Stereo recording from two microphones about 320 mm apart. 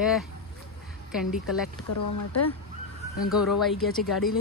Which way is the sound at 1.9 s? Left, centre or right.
Left.